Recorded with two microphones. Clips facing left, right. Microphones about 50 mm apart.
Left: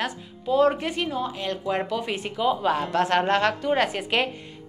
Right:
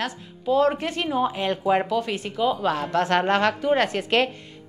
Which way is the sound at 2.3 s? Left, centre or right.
Centre.